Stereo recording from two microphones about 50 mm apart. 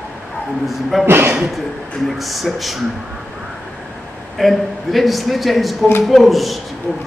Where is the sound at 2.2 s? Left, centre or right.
Centre.